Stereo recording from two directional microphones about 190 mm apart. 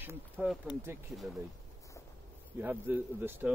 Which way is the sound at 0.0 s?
10° right (ahead or behind).